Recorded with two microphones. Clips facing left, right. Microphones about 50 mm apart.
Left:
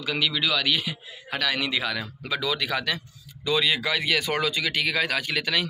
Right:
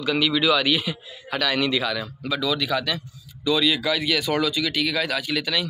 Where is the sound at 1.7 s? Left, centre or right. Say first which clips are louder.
Right 3 dB; centre.